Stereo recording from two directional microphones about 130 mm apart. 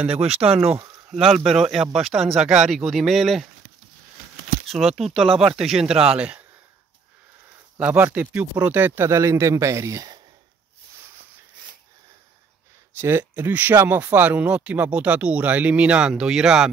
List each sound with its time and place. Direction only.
0.2 s speech: 50° right (ahead or behind)
1.1 s speech: centre (ahead or behind)
4.6 s speech: centre (ahead or behind)
7.8 s speech: 15° right (ahead or behind); by 10.2 s 30° right (ahead or behind)
12.9 s speech: 15° right (ahead or behind)